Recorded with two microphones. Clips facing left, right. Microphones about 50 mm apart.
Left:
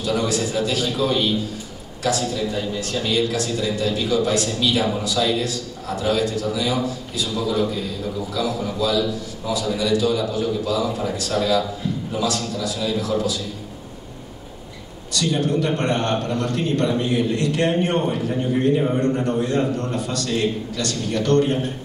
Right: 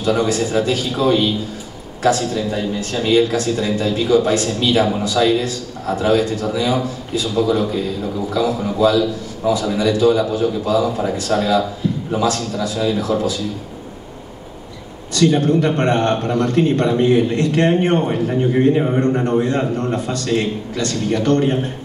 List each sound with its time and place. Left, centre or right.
0.0 s a man's voice: right
15.1 s a man's voice: right